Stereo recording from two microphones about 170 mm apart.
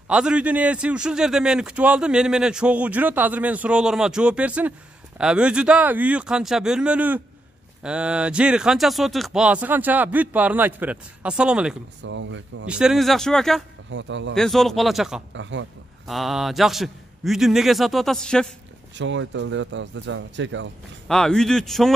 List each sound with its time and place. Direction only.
0.1 s a man's voice: 5° right (ahead or behind)
12.0 s speech: 90° right
12.6 s speech: 5° right (ahead or behind)
13.8 s speech: 90° right
14.3 s speech: centre (ahead or behind)
15.3 s speech: 90° right
16.1 s speech: centre (ahead or behind)
18.9 s speech: 90° right
21.1 s speech: 5° left (ahead or behind)